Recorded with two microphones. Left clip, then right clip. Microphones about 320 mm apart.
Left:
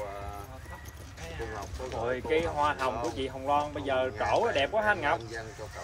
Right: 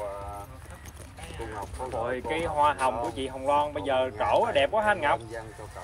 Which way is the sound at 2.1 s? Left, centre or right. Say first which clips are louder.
Left 4 dB; right.